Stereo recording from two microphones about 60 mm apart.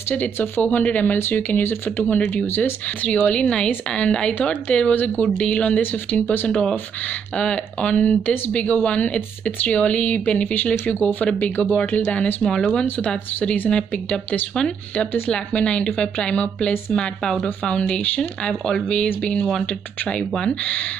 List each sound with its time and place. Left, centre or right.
0.1 s speech: left
2.3 s speech: left
3.0 s speech: centre
12.4 s speech: centre
13.4 s speech: left
13.7 s speech: centre